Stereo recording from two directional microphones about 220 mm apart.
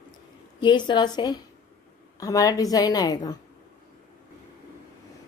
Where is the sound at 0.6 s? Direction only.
20° left (ahead or behind).